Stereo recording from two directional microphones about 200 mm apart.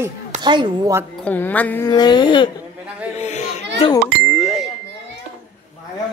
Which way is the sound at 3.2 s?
35° left (ahead or behind).